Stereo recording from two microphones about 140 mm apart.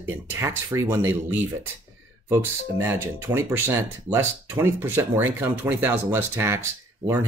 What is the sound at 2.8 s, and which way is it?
Speech, 15° right (ahead or behind).